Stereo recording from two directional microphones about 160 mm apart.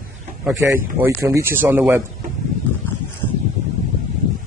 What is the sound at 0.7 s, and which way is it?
Speech, 15° right (ahead or behind).